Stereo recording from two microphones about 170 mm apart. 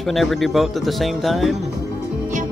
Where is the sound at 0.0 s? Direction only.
Centre (ahead or behind).